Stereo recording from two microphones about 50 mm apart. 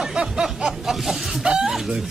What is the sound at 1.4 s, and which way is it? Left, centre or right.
Chuckle, centre.